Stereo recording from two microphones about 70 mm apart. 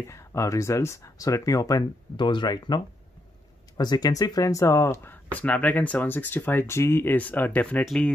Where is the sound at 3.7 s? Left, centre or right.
Left.